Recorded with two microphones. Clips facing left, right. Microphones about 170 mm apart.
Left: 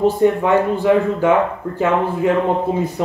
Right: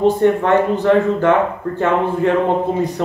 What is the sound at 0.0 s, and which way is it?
Speech, 10° left (ahead or behind).